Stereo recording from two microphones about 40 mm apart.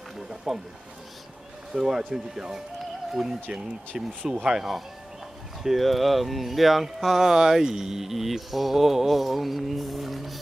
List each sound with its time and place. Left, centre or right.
0.5 s speech: centre
1.7 s speech: centre